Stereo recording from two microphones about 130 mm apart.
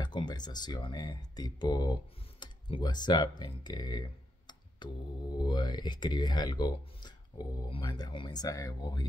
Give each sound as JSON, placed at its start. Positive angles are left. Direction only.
{"t": 0.0, "sound": "speech", "side_deg": 35}